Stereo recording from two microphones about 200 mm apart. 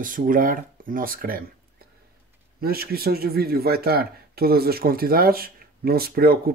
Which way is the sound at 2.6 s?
50° right (ahead or behind).